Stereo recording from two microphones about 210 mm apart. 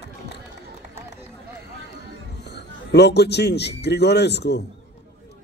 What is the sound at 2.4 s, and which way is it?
A man's voice, 50° left (ahead or behind).